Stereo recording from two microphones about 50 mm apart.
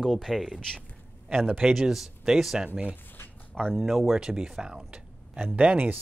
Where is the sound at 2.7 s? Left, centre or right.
Right.